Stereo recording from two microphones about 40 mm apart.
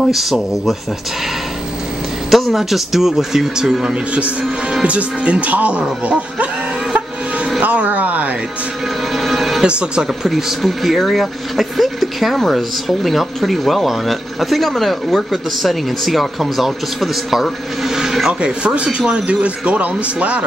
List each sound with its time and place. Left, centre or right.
0.0 s speech: centre
2.3 s a man's voice: centre
4.8 s speech: right
7.6 s a sound: right
9.1 s music: centre
9.6 s a man's voice: right
10.2 s speech: centre
18.4 s a man's voice: right